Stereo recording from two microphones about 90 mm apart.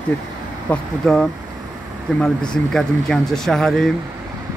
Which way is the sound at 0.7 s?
15° left (ahead or behind).